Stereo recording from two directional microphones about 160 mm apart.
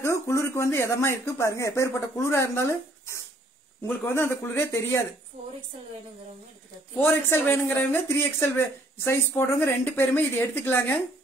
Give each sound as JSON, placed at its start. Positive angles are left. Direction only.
{"t": 0.0, "sound": "speech", "side_deg": 15}
{"t": 7.0, "sound": "speech", "side_deg": 10}